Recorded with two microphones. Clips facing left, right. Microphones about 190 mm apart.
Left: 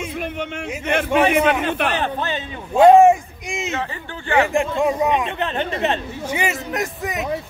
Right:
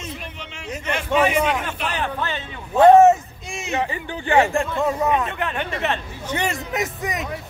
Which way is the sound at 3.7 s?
15° right (ahead or behind).